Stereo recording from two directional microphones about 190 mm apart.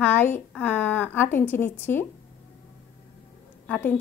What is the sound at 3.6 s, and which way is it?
Speech, 5° left (ahead or behind).